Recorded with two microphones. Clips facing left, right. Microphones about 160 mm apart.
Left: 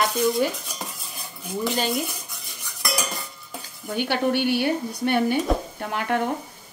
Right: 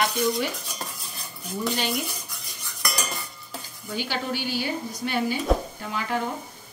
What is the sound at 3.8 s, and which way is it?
Speech, 60° left (ahead or behind).